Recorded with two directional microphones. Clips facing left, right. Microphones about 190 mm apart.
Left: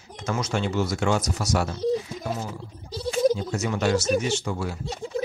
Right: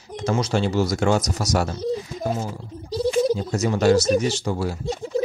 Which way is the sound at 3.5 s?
40° right (ahead or behind).